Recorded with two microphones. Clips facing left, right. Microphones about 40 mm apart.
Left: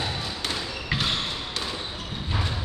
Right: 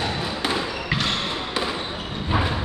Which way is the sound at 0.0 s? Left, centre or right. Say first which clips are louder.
Right 5 dB; right.